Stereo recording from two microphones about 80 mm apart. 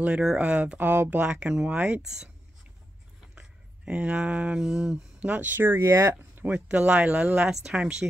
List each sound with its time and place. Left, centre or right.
0.0 s speech: centre
0.7 s speech: right
1.2 s speech: centre
3.3 s speech: centre; by 6.1 s right
6.3 s speech: centre